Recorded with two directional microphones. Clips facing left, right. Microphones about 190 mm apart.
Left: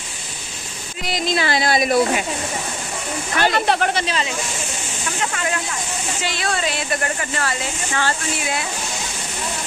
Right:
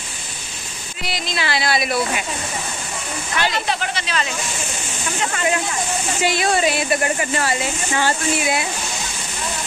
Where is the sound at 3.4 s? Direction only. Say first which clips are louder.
Left 4 dB; 55° left (ahead or behind).